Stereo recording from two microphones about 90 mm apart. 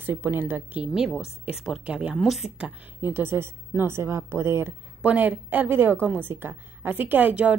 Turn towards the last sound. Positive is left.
turn(degrees=-20)  # may be behind; listen again after turning